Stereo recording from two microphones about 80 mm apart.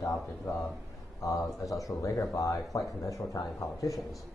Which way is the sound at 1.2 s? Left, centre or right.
Left.